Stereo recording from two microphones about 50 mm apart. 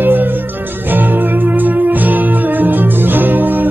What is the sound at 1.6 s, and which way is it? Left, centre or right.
Music, right.